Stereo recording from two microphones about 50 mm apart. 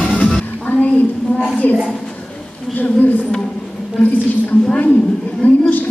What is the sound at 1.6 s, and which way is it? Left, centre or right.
Speech, left.